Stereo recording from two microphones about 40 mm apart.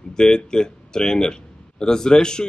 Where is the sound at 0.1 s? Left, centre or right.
Centre.